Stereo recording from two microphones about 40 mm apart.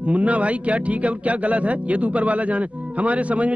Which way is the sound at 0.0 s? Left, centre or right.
Right.